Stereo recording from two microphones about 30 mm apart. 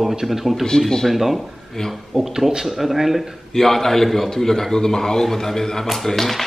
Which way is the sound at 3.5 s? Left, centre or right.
Centre.